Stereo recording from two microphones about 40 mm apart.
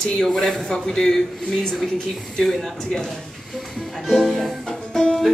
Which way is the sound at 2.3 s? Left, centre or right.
Centre.